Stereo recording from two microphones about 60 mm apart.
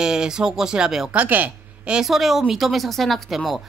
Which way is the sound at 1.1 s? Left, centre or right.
Right.